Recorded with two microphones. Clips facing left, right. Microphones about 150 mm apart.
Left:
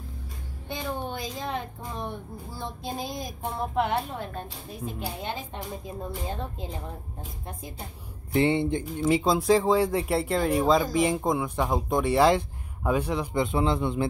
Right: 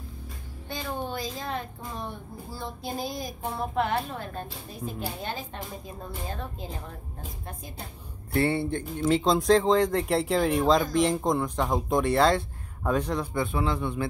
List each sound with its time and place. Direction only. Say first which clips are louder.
0.7 s a sound: left 1 dB; 20° left (ahead or behind)
2.8 s a woman's voice: right 1 dB; 20° left (ahead or behind)
8.3 s speech: left 2 dB; 15° left (ahead or behind)